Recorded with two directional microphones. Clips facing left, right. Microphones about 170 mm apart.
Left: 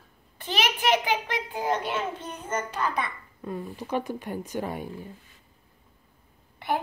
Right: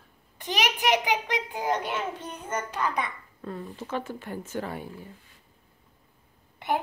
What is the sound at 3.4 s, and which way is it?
Speech, 15° left (ahead or behind).